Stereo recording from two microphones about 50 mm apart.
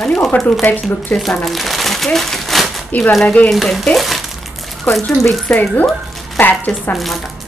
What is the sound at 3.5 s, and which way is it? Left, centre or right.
Speech, centre.